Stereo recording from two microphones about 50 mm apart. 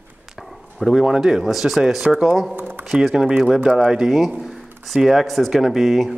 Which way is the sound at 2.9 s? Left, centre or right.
Centre.